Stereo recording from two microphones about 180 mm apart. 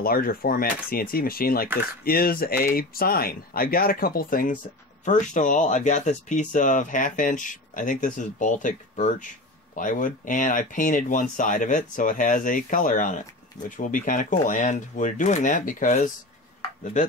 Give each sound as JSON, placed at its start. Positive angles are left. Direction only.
{"t": 0.0, "sound": "speech", "side_deg": 55}